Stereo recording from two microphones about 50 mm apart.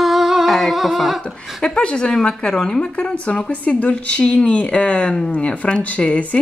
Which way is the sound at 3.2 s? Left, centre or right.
Left.